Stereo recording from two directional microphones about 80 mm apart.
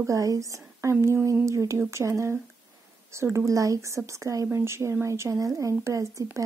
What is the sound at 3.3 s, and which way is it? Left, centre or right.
Speech, right.